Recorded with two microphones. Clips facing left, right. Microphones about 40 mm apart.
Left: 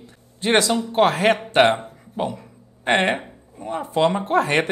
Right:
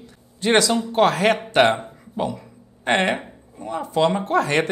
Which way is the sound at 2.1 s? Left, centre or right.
Left.